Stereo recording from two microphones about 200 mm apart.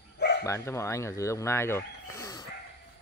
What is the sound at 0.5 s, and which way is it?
Speech, 15° left (ahead or behind).